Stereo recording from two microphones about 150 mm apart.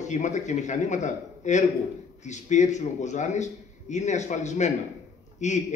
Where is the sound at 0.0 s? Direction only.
50° left (ahead or behind).